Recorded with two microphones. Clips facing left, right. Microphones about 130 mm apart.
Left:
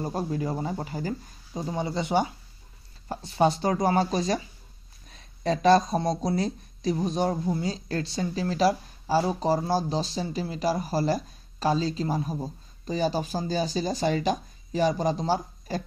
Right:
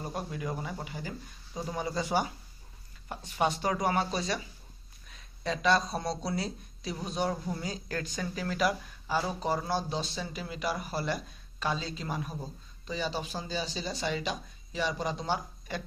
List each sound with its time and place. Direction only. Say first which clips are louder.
0.0 s a woman's voice: left 7 dB; 35° left (ahead or behind)
3.1 s a woman's voice: left 7 dB; 35° left (ahead or behind)